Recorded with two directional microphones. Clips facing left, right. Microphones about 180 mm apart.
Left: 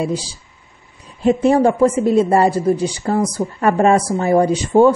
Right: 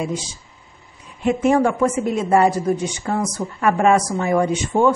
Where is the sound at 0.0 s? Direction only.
35° left (ahead or behind).